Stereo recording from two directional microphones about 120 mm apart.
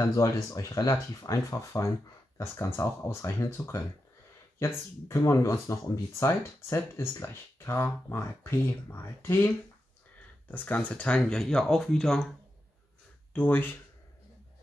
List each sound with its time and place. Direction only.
0.0 s speech: 25° left (ahead or behind)
10.5 s speech: 15° left (ahead or behind)
13.3 s speech: 15° left (ahead or behind)